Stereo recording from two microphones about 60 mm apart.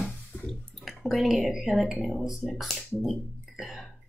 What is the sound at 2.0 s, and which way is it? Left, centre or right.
A woman's voice, centre.